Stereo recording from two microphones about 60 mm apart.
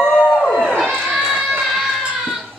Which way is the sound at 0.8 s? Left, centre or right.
Centre.